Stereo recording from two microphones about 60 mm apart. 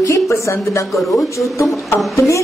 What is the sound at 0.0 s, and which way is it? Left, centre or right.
Speech, left.